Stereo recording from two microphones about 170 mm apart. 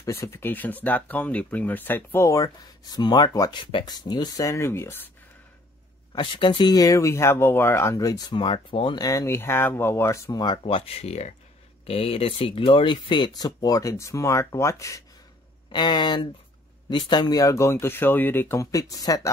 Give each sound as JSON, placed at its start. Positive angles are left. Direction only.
{"t": 0.0, "sound": "speech", "side_deg": 15}
{"t": 6.1, "sound": "speech", "side_deg": 25}